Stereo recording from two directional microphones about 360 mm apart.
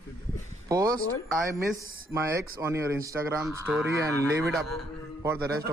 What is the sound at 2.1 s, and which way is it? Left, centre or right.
A man's voice, centre.